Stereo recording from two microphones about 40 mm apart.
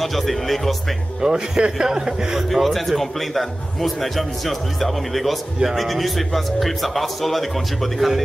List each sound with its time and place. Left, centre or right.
0.0 s a man's voice: centre
1.2 s a man's voice: centre
2.5 s a man's voice: centre